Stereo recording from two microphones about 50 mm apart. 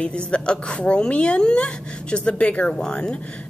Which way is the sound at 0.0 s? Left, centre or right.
Centre.